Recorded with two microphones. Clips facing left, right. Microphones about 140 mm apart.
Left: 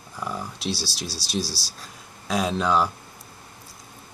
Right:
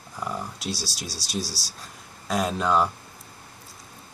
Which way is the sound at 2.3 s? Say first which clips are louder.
Left 1 dB; 5° right (ahead or behind).